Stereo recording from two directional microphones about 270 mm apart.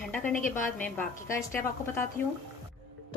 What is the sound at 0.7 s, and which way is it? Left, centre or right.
A woman's voice, centre.